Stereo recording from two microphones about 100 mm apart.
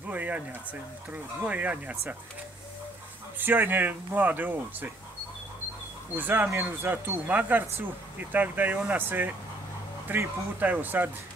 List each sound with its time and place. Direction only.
0.1 s speech: 15° right (ahead or behind)
1.5 s speech: 15° right (ahead or behind)
3.3 s speech: 20° right (ahead or behind)
6.1 s speech: 20° right (ahead or behind)